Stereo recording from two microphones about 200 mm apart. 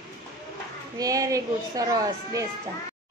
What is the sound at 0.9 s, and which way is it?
A child's voice, 15° right (ahead or behind).